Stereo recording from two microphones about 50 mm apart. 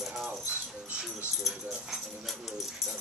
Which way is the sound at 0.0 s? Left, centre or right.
Centre.